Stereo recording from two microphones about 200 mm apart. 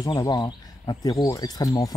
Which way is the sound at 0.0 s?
20° left (ahead or behind).